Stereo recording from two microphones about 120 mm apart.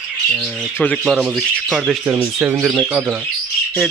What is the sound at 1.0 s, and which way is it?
Speech, centre (ahead or behind).